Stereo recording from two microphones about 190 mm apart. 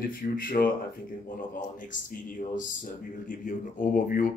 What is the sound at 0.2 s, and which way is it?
Speech, 50° left (ahead or behind).